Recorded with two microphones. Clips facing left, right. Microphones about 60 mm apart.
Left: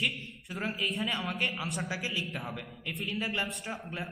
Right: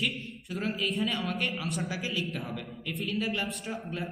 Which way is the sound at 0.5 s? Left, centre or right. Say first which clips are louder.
Right 2 dB; centre.